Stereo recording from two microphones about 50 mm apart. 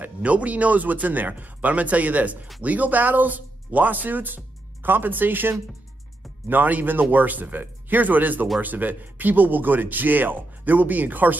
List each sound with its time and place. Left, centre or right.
0.2 s speech: right